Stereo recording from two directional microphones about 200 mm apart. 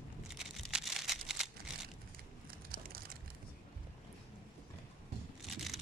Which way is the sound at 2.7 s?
45° right (ahead or behind).